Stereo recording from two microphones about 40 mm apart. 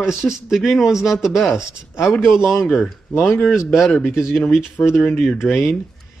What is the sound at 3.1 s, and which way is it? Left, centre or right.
Speech, left.